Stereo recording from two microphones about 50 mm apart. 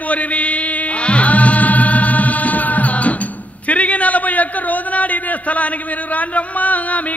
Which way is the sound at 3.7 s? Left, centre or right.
Left.